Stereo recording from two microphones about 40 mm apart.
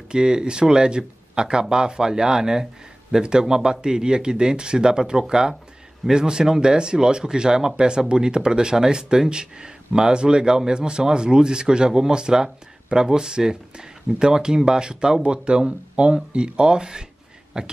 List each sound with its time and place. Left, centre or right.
0.1 s speech: centre